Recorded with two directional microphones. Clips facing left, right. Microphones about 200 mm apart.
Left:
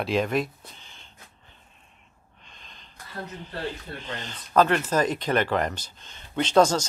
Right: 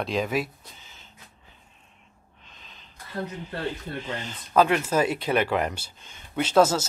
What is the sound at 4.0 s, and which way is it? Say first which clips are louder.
Speech: right 3 dB; 10° right (ahead or behind).